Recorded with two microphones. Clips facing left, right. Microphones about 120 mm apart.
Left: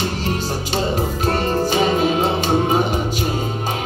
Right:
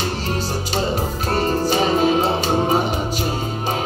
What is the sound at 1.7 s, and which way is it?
Music, 40° right (ahead or behind).